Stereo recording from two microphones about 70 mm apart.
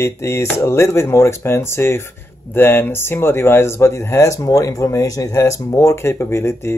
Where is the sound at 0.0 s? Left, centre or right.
Left.